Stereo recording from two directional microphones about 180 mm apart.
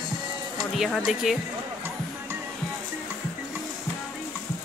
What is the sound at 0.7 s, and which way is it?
Speech, centre (ahead or behind).